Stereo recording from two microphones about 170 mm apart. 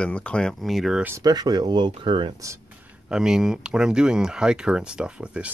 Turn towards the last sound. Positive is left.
turn(degrees=-5)  # may be behind; listen again after turning